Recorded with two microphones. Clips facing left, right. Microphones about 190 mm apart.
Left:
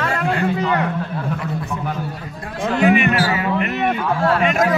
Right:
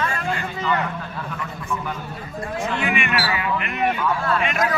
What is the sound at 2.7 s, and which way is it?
Speech, 40° left (ahead or behind).